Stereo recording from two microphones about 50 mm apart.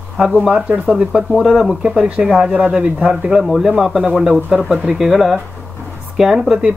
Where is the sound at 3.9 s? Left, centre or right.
Centre.